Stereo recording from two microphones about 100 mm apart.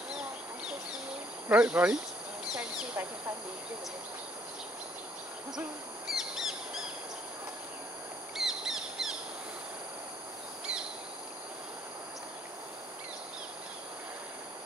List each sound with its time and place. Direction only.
1.5 s speech: 15° right (ahead or behind)
6.0 s bird: 5° right (ahead or behind)
8.4 s bird: 5° right (ahead or behind)